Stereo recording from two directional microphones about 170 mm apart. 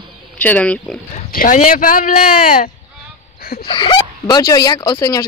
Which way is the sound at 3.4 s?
65° left (ahead or behind).